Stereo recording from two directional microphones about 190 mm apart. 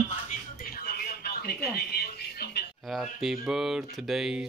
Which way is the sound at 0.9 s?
55° left (ahead or behind).